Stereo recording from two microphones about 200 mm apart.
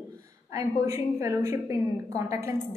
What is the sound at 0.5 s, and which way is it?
A woman's voice, 15° right (ahead or behind).